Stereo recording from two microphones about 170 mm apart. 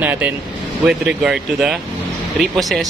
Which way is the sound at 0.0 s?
10° right (ahead or behind).